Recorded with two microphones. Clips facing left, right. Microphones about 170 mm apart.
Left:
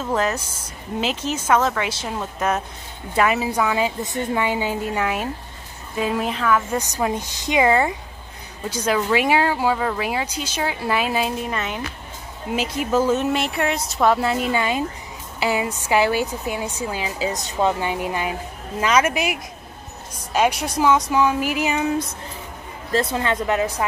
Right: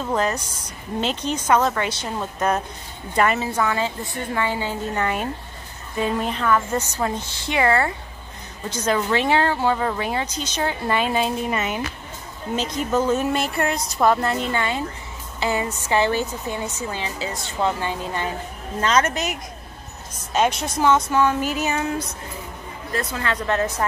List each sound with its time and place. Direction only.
0.0 s speech: centre (ahead or behind)
6.8 s speech: 15° left (ahead or behind); by 11.8 s 5° right (ahead or behind)
12.5 s speech: 5° left (ahead or behind)
22.9 s a woman's voice: 20° left (ahead or behind)